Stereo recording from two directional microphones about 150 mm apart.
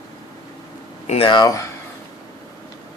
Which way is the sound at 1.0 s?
45° left (ahead or behind).